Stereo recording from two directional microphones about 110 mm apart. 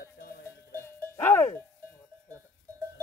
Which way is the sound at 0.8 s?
20° left (ahead or behind).